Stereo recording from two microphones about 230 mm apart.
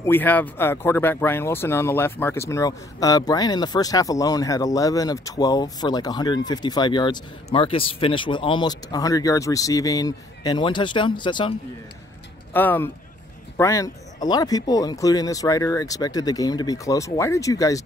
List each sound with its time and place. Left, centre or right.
0.0 s speech: centre
12.5 s speech: centre